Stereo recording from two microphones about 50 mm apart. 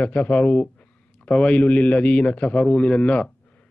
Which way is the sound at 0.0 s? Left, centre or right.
Left.